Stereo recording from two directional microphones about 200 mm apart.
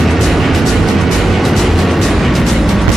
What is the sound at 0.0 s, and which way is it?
Music, centre (ahead or behind).